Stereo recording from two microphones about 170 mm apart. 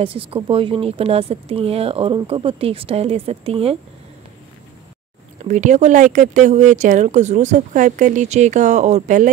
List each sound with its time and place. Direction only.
0.0 s speech: 35° right (ahead or behind)
5.4 s speech: 45° right (ahead or behind)